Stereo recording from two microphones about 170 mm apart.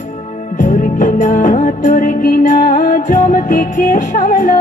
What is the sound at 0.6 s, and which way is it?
Music, 50° left (ahead or behind).